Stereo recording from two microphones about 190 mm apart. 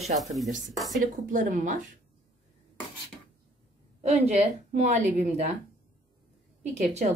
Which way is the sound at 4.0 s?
35° right (ahead or behind).